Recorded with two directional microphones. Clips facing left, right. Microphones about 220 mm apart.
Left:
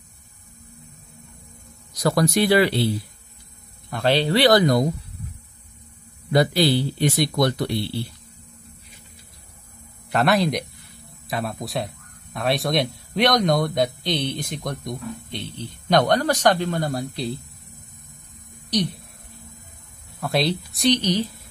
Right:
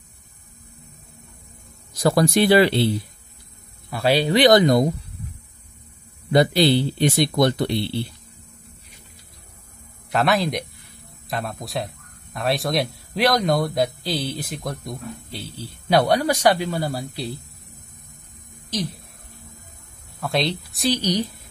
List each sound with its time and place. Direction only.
2.0 s speech: 30° right (ahead or behind)
3.9 s speech: 10° right (ahead or behind)
6.3 s speech: 25° right (ahead or behind)
10.0 s a man's voice: centre (ahead or behind)
18.7 s speech: centre (ahead or behind)
20.2 s speech: centre (ahead or behind)
21.0 s speech: 15° right (ahead or behind)